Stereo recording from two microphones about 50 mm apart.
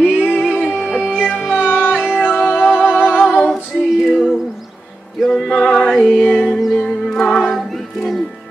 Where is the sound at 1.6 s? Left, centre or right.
Left.